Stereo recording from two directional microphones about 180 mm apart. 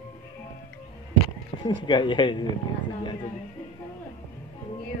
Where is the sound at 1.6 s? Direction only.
25° left (ahead or behind).